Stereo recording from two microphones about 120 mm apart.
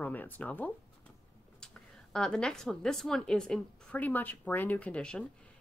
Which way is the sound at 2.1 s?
5° left (ahead or behind).